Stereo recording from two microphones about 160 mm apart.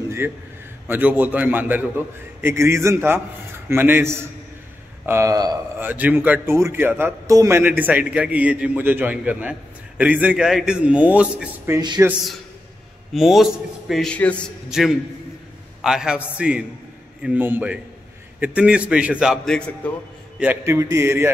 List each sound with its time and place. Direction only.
0.2 s a man's voice: 15° right (ahead or behind)
5.8 s a man's voice: 10° right (ahead or behind)
13.1 s a man's voice: centre (ahead or behind)
20.3 s a man's voice: 15° right (ahead or behind)